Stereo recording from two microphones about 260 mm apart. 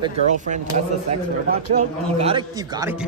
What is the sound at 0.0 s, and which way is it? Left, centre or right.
Speech, right.